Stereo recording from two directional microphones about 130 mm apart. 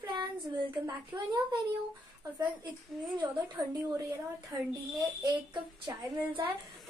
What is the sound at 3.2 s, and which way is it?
A woman's voice, 30° right (ahead or behind).